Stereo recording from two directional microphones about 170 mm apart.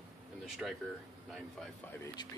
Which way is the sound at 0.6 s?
5° right (ahead or behind).